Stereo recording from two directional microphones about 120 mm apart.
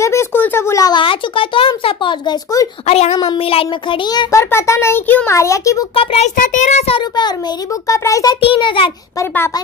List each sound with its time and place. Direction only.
0.0 s a sound: 25° left (ahead or behind)
1.0 s speech: 45° left (ahead or behind)
2.9 s speech: 60° left (ahead or behind)
4.3 s a child's voice: 25° left (ahead or behind)
5.9 s a child's voice: 70° left (ahead or behind); by 6.8 s 90° left
7.9 s a child's voice: 25° left (ahead or behind)
8.4 s speech: 45° left (ahead or behind)